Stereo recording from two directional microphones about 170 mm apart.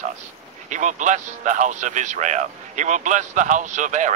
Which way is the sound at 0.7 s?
45° right (ahead or behind).